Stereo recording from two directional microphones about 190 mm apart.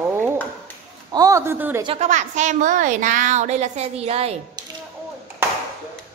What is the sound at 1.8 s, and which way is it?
A woman's voice, 35° right (ahead or behind).